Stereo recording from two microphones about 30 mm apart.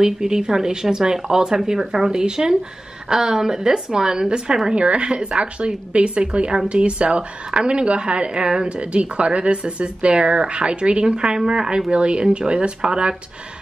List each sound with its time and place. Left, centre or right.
0.0 s speech: centre
4.7 s speech: right